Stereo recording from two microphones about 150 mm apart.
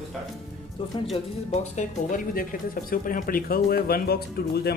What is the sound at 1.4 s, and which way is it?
Speech, 60° left (ahead or behind).